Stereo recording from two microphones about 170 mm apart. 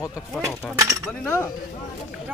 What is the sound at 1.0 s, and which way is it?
Speech, 10° left (ahead or behind).